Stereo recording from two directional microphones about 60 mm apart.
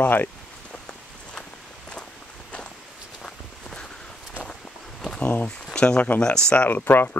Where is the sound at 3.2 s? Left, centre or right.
Centre.